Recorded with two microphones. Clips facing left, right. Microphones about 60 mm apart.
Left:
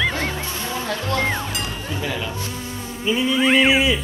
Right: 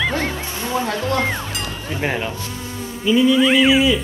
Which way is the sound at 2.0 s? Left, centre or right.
Right.